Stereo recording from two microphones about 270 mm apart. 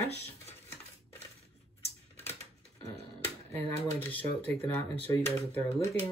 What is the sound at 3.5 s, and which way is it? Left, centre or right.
Speech, centre.